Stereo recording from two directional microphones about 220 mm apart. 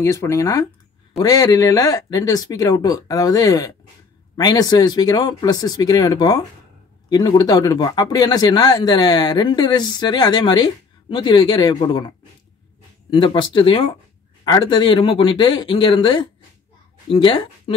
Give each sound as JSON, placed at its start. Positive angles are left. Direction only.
{"t": 0.0, "sound": "speech", "side_deg": 10}
{"t": 13.1, "sound": "speech", "side_deg": 25}